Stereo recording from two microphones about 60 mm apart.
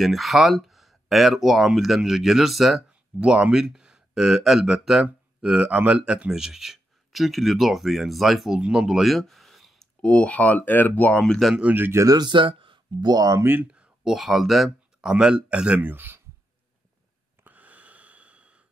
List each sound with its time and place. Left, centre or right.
0.0 s speech: centre
2.9 s speech: centre
10.0 s speech: centre
11.1 s speech: centre
12.0 s speech: right
13.1 s speech: right
13.4 s speech: right
14.0 s speech: centre
15.0 s speech: centre
15.8 s speech: right
17.4 s breathing: right